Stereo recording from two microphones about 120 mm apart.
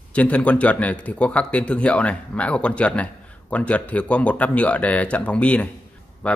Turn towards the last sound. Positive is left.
turn(degrees=10)  # may be behind; listen again after turning